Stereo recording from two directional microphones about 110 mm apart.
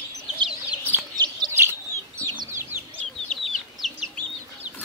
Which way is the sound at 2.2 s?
25° right (ahead or behind).